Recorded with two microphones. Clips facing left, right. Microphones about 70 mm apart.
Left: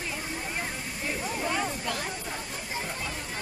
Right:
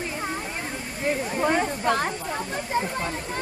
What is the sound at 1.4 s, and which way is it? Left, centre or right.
Speech, right.